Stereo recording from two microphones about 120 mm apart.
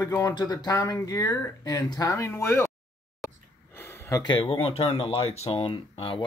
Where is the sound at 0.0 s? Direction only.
30° left (ahead or behind).